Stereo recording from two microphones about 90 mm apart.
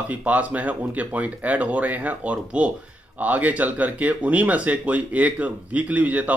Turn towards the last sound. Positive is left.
turn(degrees=-15)  # may be behind; listen again after turning